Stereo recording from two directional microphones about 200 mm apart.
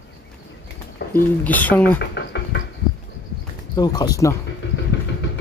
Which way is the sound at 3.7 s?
20° left (ahead or behind).